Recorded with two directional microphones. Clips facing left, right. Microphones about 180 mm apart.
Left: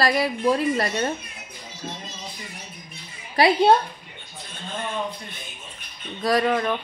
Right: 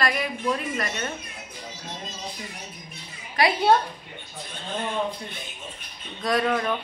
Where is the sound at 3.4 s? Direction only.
30° left (ahead or behind).